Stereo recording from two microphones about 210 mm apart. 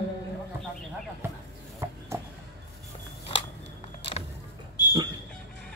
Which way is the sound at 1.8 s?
10° right (ahead or behind).